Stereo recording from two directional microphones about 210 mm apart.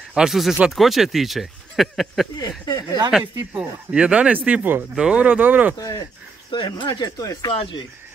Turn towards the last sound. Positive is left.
turn(degrees=25)  # may be behind; listen again after turning